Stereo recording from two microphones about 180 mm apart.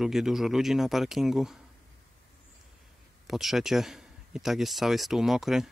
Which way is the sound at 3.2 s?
Centre (ahead or behind).